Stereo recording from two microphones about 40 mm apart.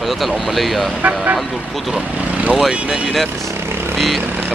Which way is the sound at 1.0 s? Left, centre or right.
Right.